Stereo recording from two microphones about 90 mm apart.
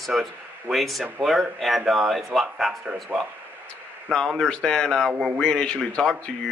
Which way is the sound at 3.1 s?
20° right (ahead or behind).